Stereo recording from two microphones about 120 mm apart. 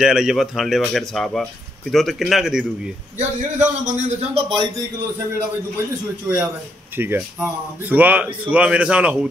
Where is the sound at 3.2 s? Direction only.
75° right (ahead or behind).